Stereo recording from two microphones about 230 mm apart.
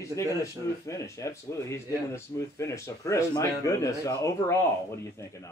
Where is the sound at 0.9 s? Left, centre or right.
Centre.